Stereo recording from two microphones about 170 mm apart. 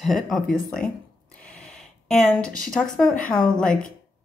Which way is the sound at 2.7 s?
5° left (ahead or behind).